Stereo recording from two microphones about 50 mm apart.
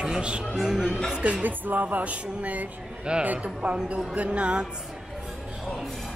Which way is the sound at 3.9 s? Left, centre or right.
Right.